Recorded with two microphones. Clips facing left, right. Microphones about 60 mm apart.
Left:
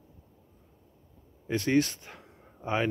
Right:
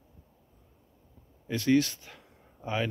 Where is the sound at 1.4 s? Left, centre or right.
Left.